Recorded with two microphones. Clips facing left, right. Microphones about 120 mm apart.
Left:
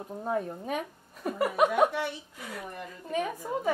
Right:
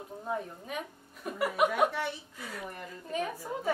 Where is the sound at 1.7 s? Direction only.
20° left (ahead or behind).